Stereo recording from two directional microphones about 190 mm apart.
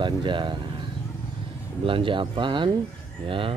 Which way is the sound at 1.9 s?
25° right (ahead or behind).